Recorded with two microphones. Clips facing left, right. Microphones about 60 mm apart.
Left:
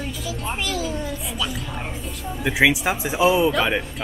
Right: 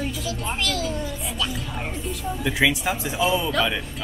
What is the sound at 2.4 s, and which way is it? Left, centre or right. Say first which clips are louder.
Speech: left 4 dB; centre.